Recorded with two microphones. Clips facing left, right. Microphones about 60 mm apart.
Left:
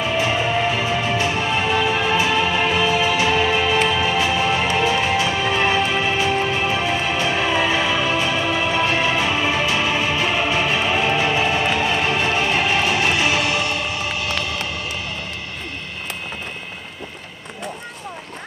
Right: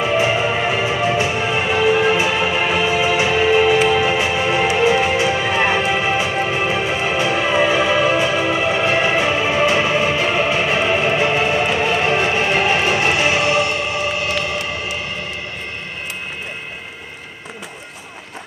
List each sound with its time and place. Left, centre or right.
0.0 s music: right